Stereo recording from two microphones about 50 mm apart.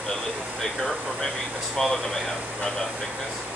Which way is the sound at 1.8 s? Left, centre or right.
Centre.